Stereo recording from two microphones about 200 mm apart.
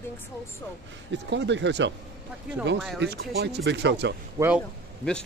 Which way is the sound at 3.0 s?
55° right (ahead or behind).